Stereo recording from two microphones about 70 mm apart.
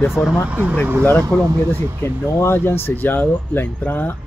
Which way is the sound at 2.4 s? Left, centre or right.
Left.